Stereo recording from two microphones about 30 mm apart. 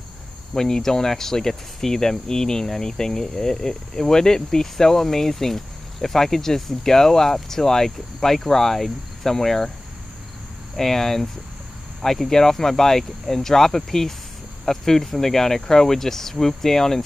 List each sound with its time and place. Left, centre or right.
0.6 s cricket: centre
10.8 s cricket: centre
12.3 s cricket: centre